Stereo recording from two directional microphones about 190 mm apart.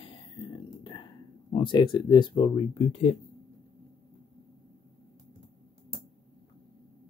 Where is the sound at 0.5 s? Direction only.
25° left (ahead or behind).